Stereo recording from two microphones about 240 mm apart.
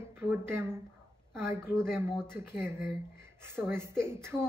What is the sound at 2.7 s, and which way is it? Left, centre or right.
Speech, centre.